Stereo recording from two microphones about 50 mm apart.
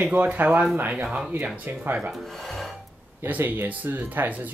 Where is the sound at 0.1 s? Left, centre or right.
Right.